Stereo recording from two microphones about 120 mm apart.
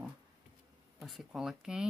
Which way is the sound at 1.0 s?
Centre (ahead or behind).